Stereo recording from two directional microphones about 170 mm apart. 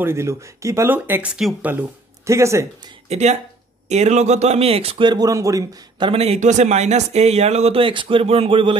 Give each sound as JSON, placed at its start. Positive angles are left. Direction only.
{"t": 0.0, "sound": "speech", "side_deg": -15}
{"t": 3.1, "sound": "speech", "side_deg": -40}